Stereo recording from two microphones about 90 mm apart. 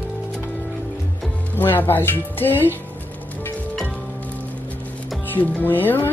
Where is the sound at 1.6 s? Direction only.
20° left (ahead or behind).